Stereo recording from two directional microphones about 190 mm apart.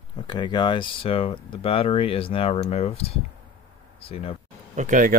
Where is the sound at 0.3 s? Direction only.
25° left (ahead or behind).